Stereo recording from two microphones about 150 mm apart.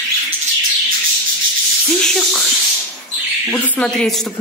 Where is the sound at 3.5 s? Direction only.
5° left (ahead or behind).